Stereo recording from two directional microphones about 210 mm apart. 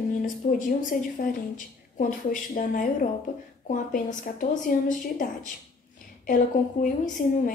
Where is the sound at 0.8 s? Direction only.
40° left (ahead or behind).